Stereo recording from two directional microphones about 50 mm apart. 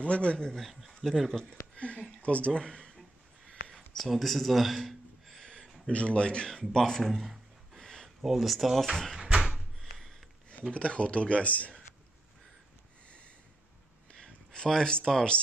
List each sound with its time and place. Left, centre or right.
0.0 s speech: left
0.7 s speech: centre
1.8 s speech: left
3.7 s a man's voice: centre
5.4 s a sound: centre
5.9 s speech: left
6.7 s a sound: centre
8.2 s speech: centre
9.1 s door: centre
9.8 s a sound: centre
10.7 s speech: left
14.1 s speech: centre